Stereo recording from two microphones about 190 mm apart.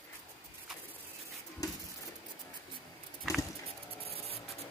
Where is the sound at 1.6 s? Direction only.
20° left (ahead or behind).